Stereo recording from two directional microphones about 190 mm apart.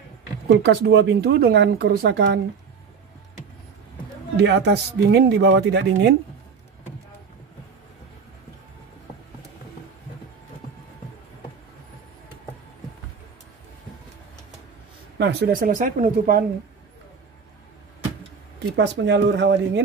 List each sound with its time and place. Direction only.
0.5 s speech: 60° right (ahead or behind)
4.4 s speech: 65° right (ahead or behind)
15.1 s speech: 60° right (ahead or behind)
18.8 s speech: 70° right (ahead or behind)